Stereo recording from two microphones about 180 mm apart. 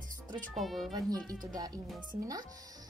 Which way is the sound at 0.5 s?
Centre (ahead or behind).